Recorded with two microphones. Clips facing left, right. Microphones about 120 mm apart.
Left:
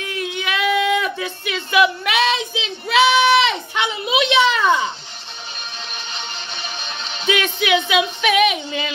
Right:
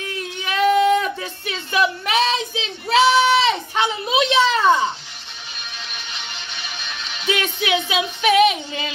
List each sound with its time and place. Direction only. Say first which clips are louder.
0.5 s a sound: right 4 dB; 40° right (ahead or behind)
6.1 s music: left 3 dB; 30° left (ahead or behind)
7.6 s speech: left 4 dB; 30° right (ahead or behind)